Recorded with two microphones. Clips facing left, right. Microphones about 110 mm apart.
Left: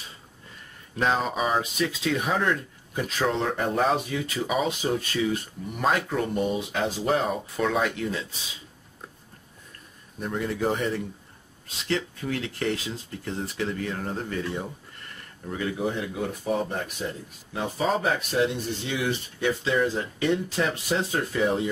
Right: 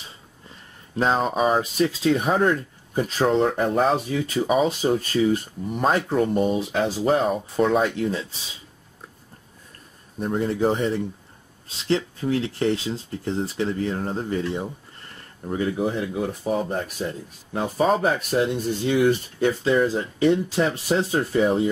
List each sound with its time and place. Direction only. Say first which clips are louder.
0.9 s speech: right 4 dB; 35° right (ahead or behind)
10.1 s speech: right 5 dB; 35° right (ahead or behind)